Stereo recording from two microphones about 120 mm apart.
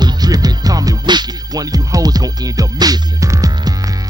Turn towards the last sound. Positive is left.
turn(degrees=-30)  # may be behind; listen again after turning